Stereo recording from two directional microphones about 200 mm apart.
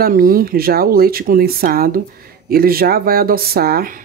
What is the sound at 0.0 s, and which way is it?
Speech, 45° right (ahead or behind).